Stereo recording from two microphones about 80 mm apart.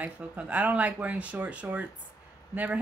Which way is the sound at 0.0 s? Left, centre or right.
Centre.